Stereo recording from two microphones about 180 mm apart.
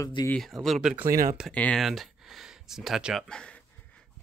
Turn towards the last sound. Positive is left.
turn(degrees=5)  # may be behind; listen again after turning